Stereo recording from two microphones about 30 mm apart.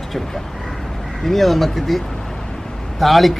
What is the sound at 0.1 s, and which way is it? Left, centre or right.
Speech, centre.